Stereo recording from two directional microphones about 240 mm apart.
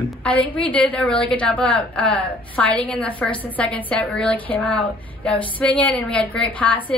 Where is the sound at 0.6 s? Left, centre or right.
Centre.